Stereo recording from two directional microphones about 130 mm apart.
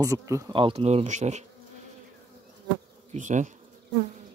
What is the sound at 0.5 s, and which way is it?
Speech, 40° right (ahead or behind).